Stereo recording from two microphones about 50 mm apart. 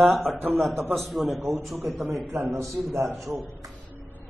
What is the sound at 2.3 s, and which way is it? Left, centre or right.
A man's voice, right.